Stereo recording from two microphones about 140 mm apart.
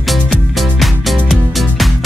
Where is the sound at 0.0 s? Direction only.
Centre (ahead or behind).